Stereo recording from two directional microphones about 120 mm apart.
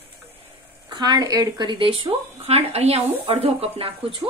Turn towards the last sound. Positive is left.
turn(degrees=-55)  # may be behind; listen again after turning